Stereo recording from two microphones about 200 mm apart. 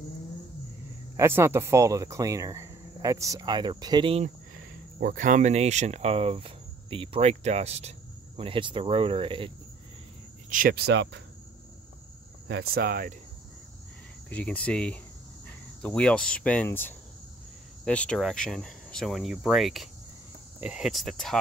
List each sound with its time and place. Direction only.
1.1 s speech: 15° right (ahead or behind)
5.0 s cricket: 40° right (ahead or behind)
8.4 s speech: 25° right (ahead or behind)
10.5 s speech: 50° right (ahead or behind)
12.4 s speech: 55° right (ahead or behind)
14.3 s speech: 5° left (ahead or behind)